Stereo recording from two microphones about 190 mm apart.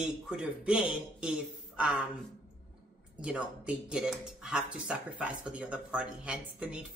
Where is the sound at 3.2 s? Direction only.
5° right (ahead or behind).